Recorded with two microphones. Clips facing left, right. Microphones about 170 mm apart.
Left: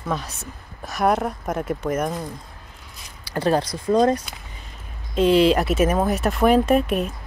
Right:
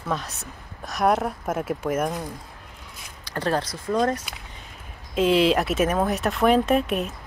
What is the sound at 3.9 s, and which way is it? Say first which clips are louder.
Speech: left 5 dB; 25° left (ahead or behind).